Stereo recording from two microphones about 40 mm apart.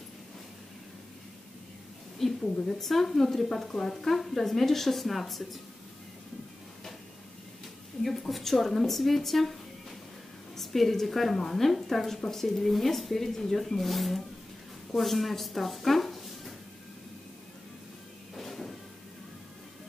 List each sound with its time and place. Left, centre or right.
2.4 s a woman's voice: centre
2.8 s a woman's voice: centre
3.9 s speech: centre
8.0 s speech: centre
18.3 s a sound: centre